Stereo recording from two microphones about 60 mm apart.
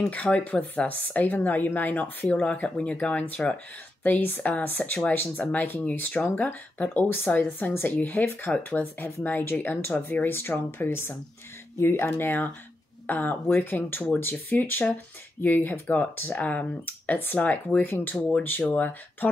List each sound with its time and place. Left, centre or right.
0.1 s speech: left